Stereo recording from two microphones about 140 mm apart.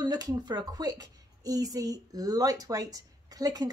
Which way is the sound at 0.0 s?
30° right (ahead or behind).